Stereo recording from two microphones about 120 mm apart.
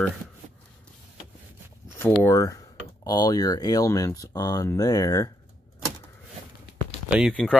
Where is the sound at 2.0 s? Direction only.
20° left (ahead or behind).